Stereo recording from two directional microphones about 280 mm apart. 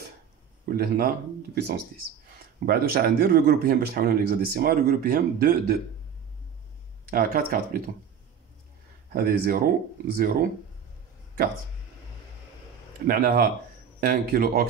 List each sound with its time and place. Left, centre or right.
0.7 s speech: right
7.1 s speech: right
9.1 s speech: right
13.0 s speech: right